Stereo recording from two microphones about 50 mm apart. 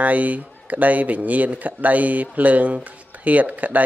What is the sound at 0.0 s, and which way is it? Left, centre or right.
A man's voice, right.